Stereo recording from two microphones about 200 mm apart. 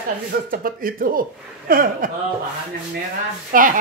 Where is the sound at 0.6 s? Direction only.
45° right (ahead or behind).